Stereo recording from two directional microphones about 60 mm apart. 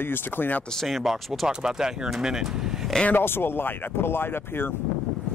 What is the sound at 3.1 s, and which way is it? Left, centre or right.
Speech, left.